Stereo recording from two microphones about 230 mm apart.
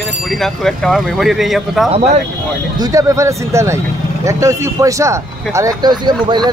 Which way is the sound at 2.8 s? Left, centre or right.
Centre.